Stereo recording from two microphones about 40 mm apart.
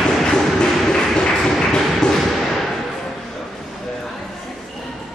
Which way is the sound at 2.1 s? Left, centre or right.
Centre.